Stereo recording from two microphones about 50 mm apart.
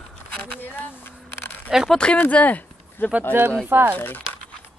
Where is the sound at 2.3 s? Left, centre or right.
Left.